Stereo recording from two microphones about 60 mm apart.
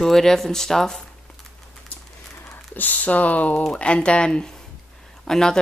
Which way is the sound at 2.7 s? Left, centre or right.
Left.